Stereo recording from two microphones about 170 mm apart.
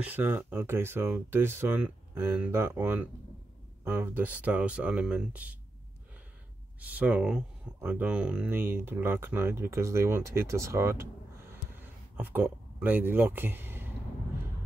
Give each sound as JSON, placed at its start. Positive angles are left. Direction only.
{"t": 0.0, "sound": "speech", "side_deg": -10}
{"t": 7.0, "sound": "speech", "side_deg": -5}